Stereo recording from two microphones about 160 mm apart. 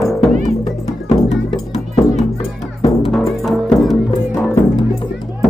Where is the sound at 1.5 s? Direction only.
Centre (ahead or behind).